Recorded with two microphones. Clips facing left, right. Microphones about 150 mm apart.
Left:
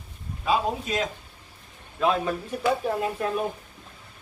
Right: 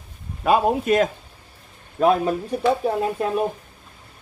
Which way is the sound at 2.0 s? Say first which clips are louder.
Right 6 dB; 40° right (ahead or behind).